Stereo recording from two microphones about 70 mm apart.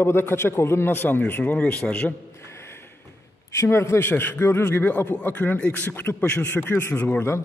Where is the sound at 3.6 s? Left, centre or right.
Left.